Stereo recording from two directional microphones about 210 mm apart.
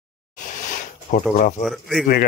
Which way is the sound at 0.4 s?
35° left (ahead or behind).